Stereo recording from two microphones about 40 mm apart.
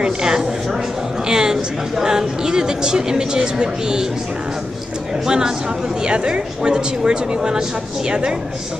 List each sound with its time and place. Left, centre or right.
0.0 s a woman's voice: centre
5.2 s a woman's voice: centre